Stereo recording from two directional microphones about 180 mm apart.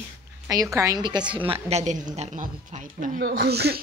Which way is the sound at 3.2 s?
65° right (ahead or behind).